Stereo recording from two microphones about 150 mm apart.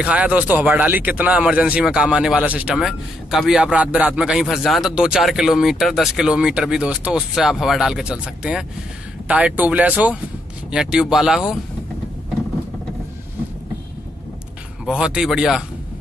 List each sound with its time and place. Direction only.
0.0 s speech: 10° right (ahead or behind)
14.9 s speech: 5° right (ahead or behind)